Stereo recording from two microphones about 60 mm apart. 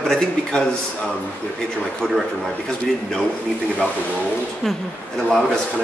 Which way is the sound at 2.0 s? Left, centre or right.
Centre.